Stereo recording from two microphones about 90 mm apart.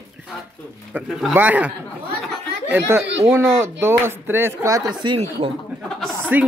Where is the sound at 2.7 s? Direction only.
25° right (ahead or behind).